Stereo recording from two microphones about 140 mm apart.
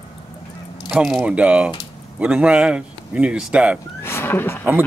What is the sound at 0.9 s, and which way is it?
Speech, centre (ahead or behind).